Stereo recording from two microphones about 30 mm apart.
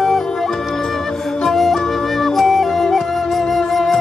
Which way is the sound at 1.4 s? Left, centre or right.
Centre.